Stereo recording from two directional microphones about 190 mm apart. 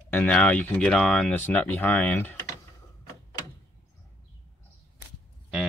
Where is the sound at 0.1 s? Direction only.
10° left (ahead or behind).